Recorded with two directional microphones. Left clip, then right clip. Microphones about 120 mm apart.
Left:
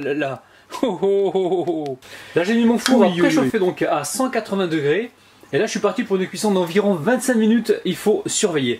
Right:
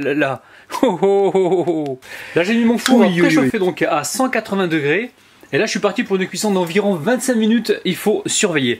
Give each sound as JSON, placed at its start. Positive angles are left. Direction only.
{"t": 0.0, "sound": "speech", "side_deg": -35}
{"t": 6.9, "sound": "speech", "side_deg": -15}
{"t": 7.6, "sound": "speech", "side_deg": -35}